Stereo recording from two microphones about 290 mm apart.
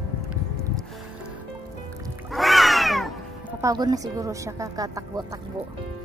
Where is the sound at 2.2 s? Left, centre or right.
Centre.